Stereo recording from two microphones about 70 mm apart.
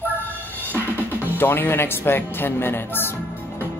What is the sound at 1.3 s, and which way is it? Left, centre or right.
Speech, left.